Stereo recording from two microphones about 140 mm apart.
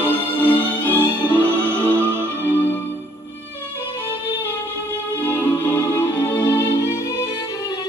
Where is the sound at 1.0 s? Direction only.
15° right (ahead or behind).